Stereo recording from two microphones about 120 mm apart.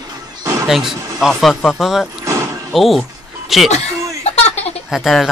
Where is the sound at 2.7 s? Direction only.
Centre (ahead or behind).